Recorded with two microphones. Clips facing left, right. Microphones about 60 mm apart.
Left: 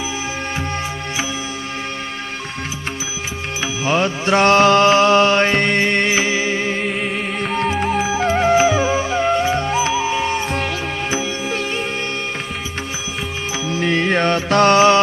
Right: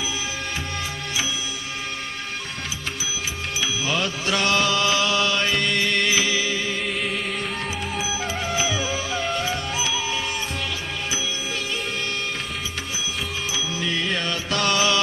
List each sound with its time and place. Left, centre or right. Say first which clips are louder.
3.6 s music: left 7 dB; left
7.6 s music: left 9 dB; left
13.7 s music: left 10 dB; left